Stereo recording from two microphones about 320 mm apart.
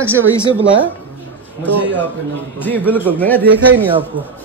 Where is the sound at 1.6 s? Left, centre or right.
Centre.